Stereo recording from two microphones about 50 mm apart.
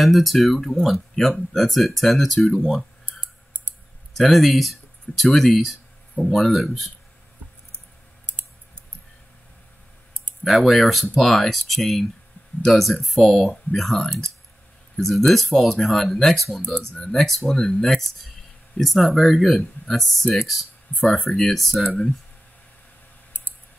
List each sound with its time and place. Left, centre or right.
0.0 s speech: centre
3.1 s clicking: right
4.2 s speech: centre
10.4 s speech: centre